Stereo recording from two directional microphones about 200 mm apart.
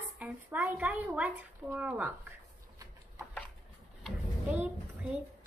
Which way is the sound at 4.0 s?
Centre (ahead or behind).